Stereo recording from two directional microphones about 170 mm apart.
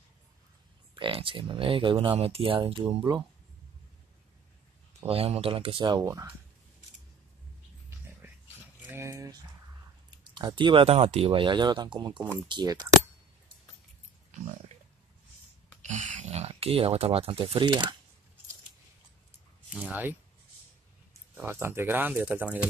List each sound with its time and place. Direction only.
0.9 s speech: 30° right (ahead or behind)
5.0 s speech: 35° right (ahead or behind); by 6.3 s 20° right (ahead or behind)
8.8 s speech: 15° right (ahead or behind)
15.8 s speech: 45° right (ahead or behind); by 17.9 s 25° right (ahead or behind)
19.7 s speech: 10° right (ahead or behind)